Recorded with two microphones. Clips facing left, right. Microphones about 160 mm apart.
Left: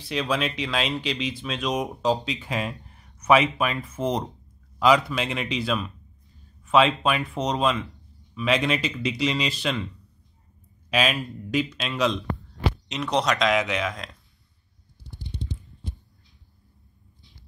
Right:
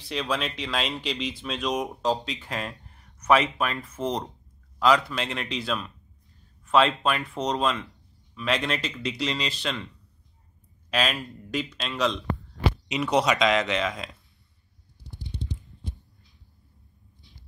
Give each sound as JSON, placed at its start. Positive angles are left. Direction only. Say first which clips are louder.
{"t": 0.1, "sound": "speech", "louder": "left 3 dB", "side_deg": 5}
{"t": 10.9, "sound": "speech", "louder": "left 3 dB", "side_deg": 5}
{"t": 12.8, "sound": "speech", "louder": "right 2 dB", "side_deg": -5}